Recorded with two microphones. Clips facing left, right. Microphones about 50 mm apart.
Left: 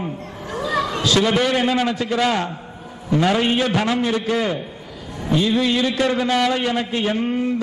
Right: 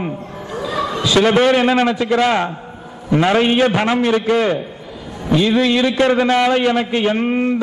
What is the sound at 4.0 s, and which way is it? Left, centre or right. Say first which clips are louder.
Speech: right 5 dB; right.